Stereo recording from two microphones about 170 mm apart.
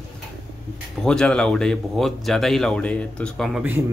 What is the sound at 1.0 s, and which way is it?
Speech, 5° left (ahead or behind).